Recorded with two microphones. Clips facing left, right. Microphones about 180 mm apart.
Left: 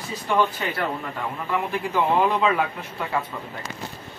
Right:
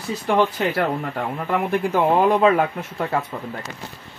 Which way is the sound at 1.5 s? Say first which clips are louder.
Right 5 dB; 45° right (ahead or behind).